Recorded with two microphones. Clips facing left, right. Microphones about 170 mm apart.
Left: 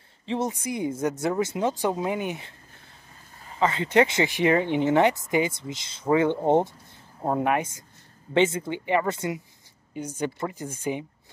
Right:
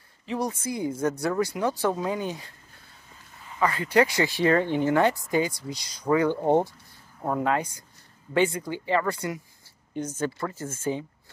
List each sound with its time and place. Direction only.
0.3 s speech: 20° left (ahead or behind)